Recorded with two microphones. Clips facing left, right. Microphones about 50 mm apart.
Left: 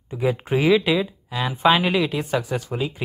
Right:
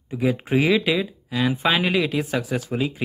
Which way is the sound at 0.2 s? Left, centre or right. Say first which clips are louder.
Even; centre.